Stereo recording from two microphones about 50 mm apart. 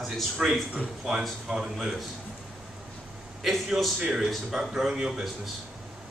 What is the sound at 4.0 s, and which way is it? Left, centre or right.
Speech, centre.